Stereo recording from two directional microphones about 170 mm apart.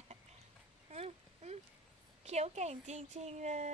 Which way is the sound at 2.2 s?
40° right (ahead or behind).